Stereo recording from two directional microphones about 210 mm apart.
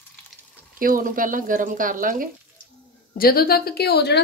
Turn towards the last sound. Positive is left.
turn(degrees=50)  # may be behind; listen again after turning